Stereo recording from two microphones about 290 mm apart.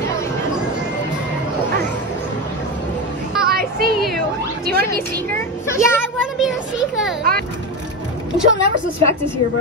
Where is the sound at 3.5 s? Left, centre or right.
Right.